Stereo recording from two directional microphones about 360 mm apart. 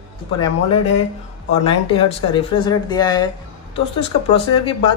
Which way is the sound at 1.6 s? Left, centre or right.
Centre.